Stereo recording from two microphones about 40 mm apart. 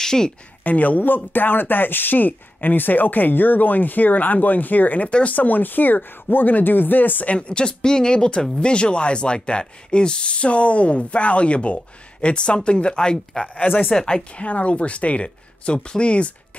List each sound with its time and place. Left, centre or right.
0.0 s speech: centre
0.7 s speech: left
7.2 s speech: left
13.6 s speech: left
13.9 s a woman's voice: centre
14.3 s speech: left